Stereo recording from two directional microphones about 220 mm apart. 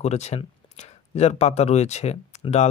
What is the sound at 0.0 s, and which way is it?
Speech, 30° left (ahead or behind).